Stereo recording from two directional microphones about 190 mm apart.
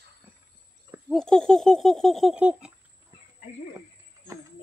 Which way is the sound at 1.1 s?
5° left (ahead or behind).